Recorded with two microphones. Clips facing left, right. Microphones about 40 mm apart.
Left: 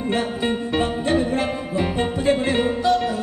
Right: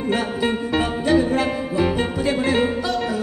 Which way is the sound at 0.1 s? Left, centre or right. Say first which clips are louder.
Right 1 dB; centre.